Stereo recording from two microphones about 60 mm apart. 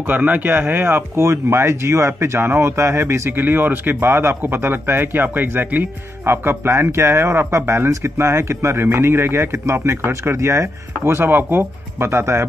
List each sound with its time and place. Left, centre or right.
0.0 s speech: right
11.2 s speech: right